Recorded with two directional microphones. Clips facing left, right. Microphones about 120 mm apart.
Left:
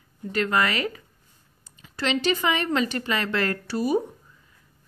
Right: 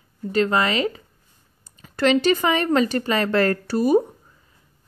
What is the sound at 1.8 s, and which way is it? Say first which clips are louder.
A woman's voice: right 8 dB; 45° right (ahead or behind).